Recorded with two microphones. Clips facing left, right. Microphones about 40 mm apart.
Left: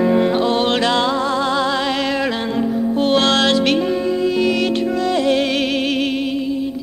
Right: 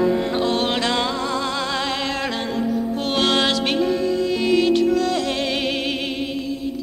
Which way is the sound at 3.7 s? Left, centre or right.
Left.